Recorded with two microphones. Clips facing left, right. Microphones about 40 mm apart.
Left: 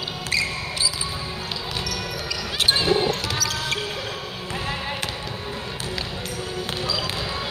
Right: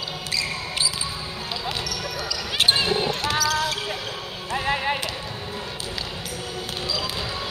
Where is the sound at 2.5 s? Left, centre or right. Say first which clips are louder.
Left 1 dB; centre.